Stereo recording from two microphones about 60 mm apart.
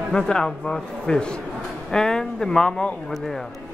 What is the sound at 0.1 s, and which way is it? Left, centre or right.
A man's voice, centre.